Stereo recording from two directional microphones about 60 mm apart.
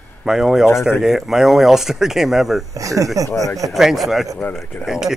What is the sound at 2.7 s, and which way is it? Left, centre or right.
Speech, right.